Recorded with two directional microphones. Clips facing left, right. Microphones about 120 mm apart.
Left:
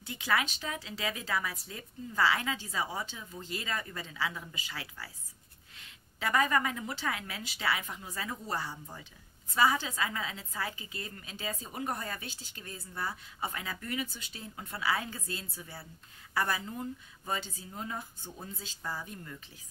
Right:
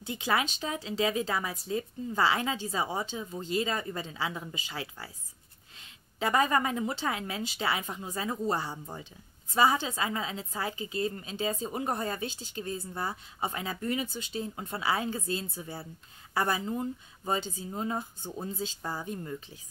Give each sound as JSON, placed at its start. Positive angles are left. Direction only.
{"t": 0.0, "sound": "speech", "side_deg": -25}